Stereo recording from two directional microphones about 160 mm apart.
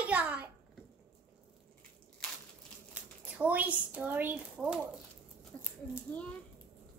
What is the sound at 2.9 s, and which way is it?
Speech, 10° right (ahead or behind).